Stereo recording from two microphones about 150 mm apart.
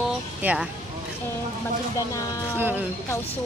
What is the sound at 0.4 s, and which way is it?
Speech, 10° right (ahead or behind).